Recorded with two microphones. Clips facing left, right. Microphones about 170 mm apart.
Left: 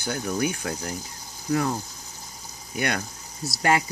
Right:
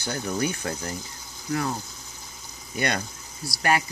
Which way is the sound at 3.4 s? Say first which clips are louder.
Left 2 dB; 20° left (ahead or behind).